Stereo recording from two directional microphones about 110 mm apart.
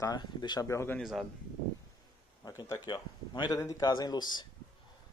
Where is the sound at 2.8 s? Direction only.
45° left (ahead or behind).